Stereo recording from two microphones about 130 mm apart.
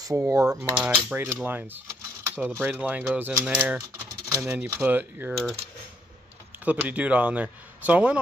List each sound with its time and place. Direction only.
0.0 s cutlery: 25° right (ahead or behind)
0.6 s speech: 15° right (ahead or behind)
5.3 s speech: centre (ahead or behind)
6.6 s speech: 10° right (ahead or behind)